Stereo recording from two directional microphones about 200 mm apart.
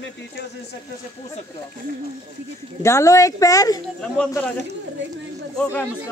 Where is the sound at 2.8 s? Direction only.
15° left (ahead or behind).